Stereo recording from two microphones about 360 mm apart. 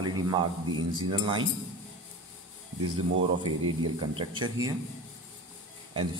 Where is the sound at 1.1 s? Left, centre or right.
Centre.